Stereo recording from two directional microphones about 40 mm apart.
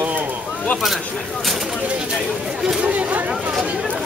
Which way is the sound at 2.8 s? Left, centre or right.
Right.